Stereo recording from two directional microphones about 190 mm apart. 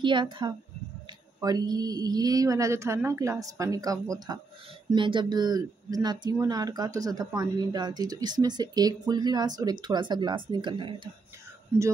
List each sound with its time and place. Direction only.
0.0 s speech: 25° right (ahead or behind)